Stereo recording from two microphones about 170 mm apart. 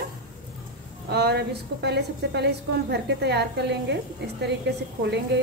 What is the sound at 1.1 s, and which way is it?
A woman's voice, 70° right (ahead or behind).